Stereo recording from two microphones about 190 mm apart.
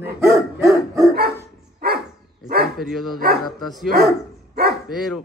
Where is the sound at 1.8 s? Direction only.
55° right (ahead or behind).